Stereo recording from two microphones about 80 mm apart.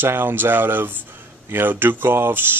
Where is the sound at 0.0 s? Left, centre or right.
Right.